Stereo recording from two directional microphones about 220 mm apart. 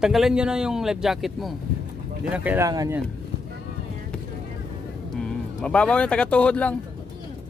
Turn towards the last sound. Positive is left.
turn(degrees=5)  # may be behind; listen again after turning